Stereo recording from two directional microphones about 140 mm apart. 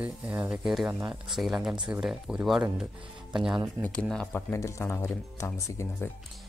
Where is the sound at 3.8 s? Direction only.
10° left (ahead or behind).